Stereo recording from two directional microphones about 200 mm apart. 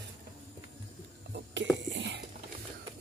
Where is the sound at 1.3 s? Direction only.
60° right (ahead or behind).